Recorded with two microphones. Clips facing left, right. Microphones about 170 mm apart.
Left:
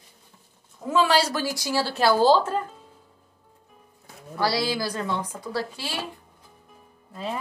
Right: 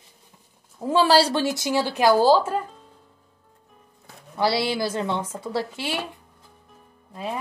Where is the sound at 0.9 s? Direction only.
30° right (ahead or behind); by 2.5 s 10° right (ahead or behind).